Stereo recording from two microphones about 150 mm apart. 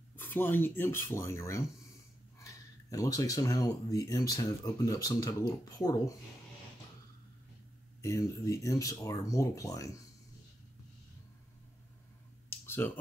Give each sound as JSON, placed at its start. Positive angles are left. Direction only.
{"t": 0.1, "sound": "speech", "side_deg": 15}
{"t": 8.0, "sound": "speech", "side_deg": 20}
{"t": 12.4, "sound": "a sound", "side_deg": 15}